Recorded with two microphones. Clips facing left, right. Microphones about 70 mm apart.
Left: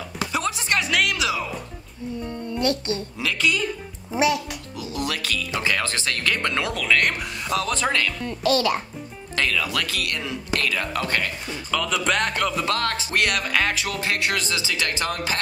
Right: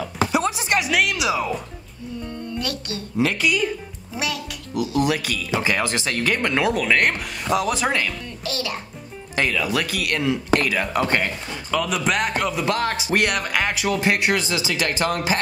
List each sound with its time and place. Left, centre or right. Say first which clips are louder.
0.3 s music: right 1 dB; right
0.8 s music: right 2 dB; centre
2.2 s music: left 5 dB; left
3.2 s speech: right 6 dB; right
4.1 s a child's voice: left 7 dB; left
4.7 s speech: right 8 dB; centre
9.3 s speech: right 2 dB; centre
11.7 s speech: right 1 dB; centre